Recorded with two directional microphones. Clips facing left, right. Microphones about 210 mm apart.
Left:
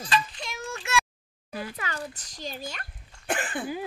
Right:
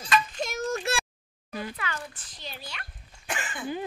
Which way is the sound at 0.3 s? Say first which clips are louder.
Right 7 dB; 45° right (ahead or behind).